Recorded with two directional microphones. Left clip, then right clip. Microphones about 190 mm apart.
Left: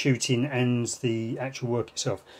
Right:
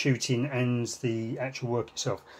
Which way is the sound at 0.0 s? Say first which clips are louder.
Left 3 dB; 15° left (ahead or behind).